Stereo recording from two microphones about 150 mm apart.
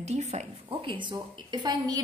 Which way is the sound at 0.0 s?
45° right (ahead or behind).